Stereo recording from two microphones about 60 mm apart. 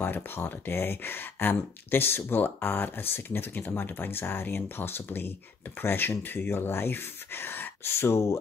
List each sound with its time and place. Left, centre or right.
0.0 s speech: left